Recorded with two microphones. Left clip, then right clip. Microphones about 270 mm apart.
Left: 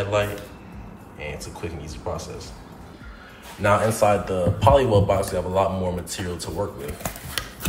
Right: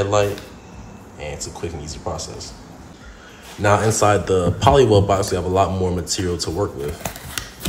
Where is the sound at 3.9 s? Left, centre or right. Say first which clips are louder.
Right 4 dB; right.